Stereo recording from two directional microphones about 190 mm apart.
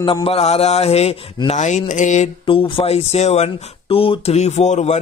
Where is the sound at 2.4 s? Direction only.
30° left (ahead or behind).